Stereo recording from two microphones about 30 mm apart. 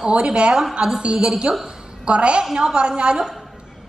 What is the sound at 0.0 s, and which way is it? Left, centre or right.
A woman's voice, right.